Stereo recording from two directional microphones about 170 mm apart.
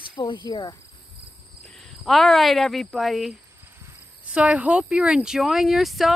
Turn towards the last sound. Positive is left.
turn(degrees=0)  # may be behind; listen again after turning